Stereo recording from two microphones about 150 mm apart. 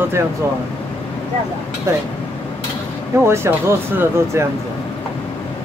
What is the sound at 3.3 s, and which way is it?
Speech, 15° right (ahead or behind).